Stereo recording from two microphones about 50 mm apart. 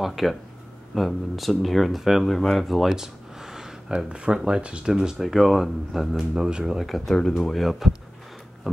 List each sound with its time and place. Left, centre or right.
0.0 s speech: centre
2.6 s a sound: centre
3.9 s speech: centre
5.2 s speech: centre